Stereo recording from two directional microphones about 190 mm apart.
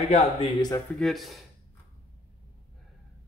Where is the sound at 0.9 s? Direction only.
Centre (ahead or behind).